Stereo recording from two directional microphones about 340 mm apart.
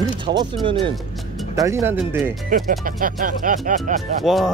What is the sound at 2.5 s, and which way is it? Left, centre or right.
Speech, right.